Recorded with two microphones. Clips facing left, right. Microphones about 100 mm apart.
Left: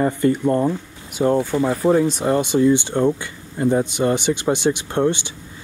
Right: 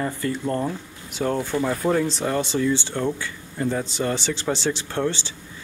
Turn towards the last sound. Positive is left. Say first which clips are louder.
# left 6 dB
turn(degrees=15)  # may be behind; listen again after turning